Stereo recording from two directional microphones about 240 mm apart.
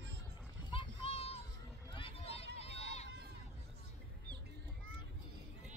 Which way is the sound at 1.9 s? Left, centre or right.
Left.